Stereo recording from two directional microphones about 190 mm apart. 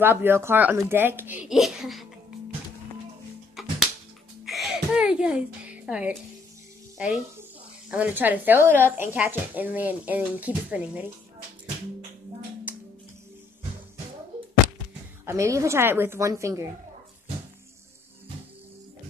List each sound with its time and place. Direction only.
0.0 s speech: 10° right (ahead or behind)
3.6 s music: centre (ahead or behind)
4.5 s a sound: centre (ahead or behind)
7.0 s a child's voice: 5° right (ahead or behind)
12.7 s music: 10° right (ahead or behind)
15.2 s speech: 15° right (ahead or behind)